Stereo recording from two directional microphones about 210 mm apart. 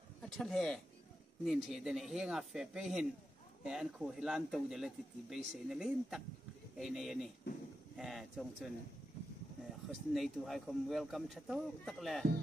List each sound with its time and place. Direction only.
0.2 s speech: centre (ahead or behind)
9.8 s speech: centre (ahead or behind)